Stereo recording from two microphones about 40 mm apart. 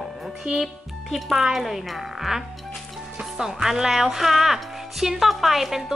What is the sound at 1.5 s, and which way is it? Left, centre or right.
A child's voice, centre.